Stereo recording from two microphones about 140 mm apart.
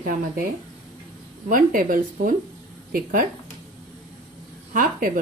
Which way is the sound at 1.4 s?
75° right (ahead or behind).